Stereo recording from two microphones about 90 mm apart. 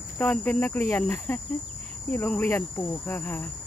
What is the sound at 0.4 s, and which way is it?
Speech, 20° left (ahead or behind).